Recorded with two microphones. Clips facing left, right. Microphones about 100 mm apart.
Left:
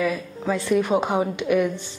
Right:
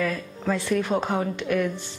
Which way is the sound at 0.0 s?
10° left (ahead or behind).